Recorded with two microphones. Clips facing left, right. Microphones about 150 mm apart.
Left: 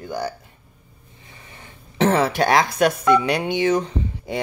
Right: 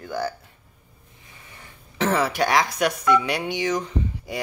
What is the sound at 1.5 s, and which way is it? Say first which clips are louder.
Speech: left 2 dB; 25° left (ahead or behind).